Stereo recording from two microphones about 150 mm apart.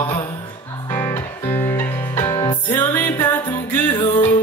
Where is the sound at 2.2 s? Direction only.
25° left (ahead or behind).